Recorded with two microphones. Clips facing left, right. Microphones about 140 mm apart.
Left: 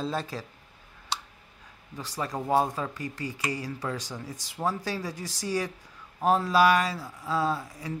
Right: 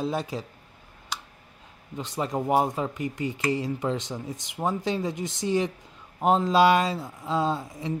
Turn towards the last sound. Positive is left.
turn(degrees=-25)  # may be behind; listen again after turning